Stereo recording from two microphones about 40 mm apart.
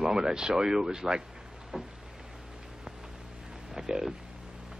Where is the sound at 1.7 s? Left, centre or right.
Centre.